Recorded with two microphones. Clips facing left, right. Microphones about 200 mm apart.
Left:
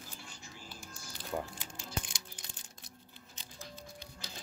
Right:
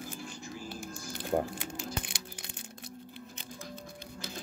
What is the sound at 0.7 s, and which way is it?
Crumpling, 50° right (ahead or behind).